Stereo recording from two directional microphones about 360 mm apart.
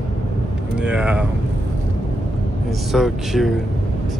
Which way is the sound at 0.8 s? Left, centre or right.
Centre.